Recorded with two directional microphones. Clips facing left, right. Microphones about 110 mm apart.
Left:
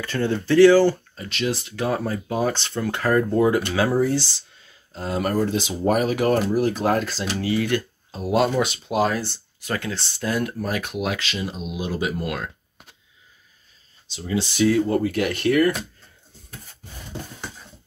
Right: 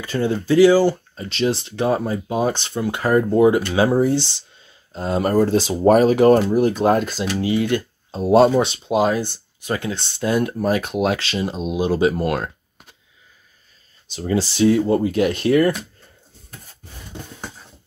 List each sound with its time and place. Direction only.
0.0 s speech: 15° right (ahead or behind)
1.1 s speech: 30° right (ahead or behind)
8.1 s speech: 30° right (ahead or behind)
14.0 s speech: 45° right (ahead or behind)
14.6 s speech: 25° right (ahead or behind)